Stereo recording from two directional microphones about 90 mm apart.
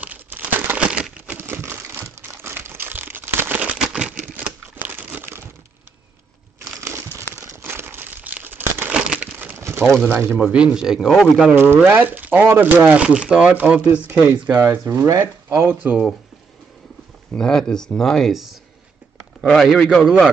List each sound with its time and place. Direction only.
0.0 s crumpling: 20° right (ahead or behind)
1.4 s crumpling: 25° right (ahead or behind)
3.7 s a sound: 10° right (ahead or behind)
4.7 s crumpling: 20° right (ahead or behind)
6.8 s crumpling: 30° right (ahead or behind)
9.6 s a sound: 25° right (ahead or behind)
10.0 s speech: 25° right (ahead or behind)
10.4 s a man's voice: 10° right (ahead or behind)
11.5 s a man's voice: 25° right (ahead or behind)
15.0 s speech: 40° right (ahead or behind)
15.6 s speech: 20° right (ahead or behind)
17.3 s a man's voice: 5° left (ahead or behind)